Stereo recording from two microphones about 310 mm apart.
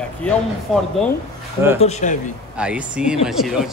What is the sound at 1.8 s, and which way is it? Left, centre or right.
Speech, left.